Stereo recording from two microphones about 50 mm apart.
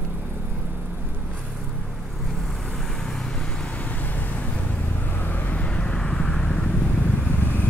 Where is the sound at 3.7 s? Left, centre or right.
Left.